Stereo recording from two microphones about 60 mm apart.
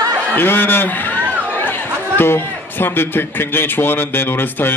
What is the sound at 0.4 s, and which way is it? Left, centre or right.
A man's voice, left.